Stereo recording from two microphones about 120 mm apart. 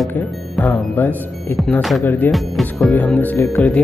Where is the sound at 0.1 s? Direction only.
15° left (ahead or behind).